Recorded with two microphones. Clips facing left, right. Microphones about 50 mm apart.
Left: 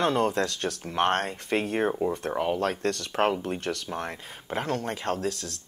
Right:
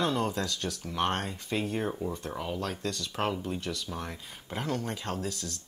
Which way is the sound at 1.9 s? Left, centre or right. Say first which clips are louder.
Left 7 dB; left.